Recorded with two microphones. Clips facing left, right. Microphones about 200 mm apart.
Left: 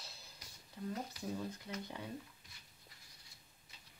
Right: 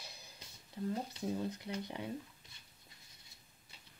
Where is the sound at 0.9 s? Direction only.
25° right (ahead or behind).